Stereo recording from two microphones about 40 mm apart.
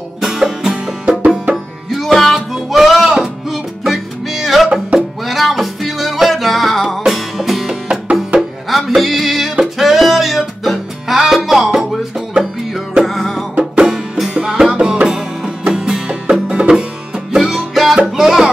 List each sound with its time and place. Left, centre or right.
0.2 s music: centre
1.0 s music: right
1.9 s music: centre
3.1 s music: centre
3.5 s music: centre
7.9 s music: right
8.4 s music: centre
13.0 s music: centre
13.8 s music: centre